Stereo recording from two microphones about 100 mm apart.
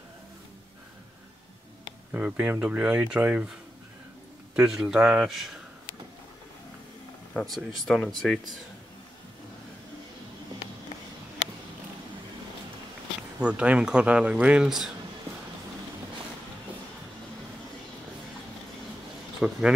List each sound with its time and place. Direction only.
2.1 s speech: 15° right (ahead or behind)
4.6 s speech: 5° right (ahead or behind)
7.3 s speech: centre (ahead or behind)
13.4 s speech: 10° right (ahead or behind)
19.4 s speech: 5° right (ahead or behind)